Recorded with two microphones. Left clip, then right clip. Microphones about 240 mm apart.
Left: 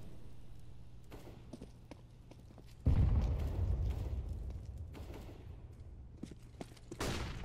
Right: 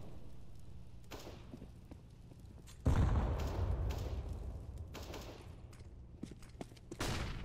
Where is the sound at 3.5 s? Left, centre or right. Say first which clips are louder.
Right 4 dB; right.